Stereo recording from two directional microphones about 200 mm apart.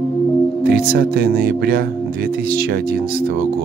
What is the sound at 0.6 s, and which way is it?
Speech, 50° right (ahead or behind).